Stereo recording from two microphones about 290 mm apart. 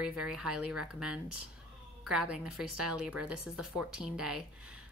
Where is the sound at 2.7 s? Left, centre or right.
Right.